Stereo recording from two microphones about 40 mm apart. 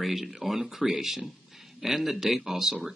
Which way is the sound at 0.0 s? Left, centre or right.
Centre.